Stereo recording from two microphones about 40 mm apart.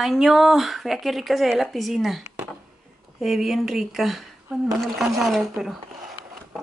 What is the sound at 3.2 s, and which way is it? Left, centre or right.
A woman's voice, centre.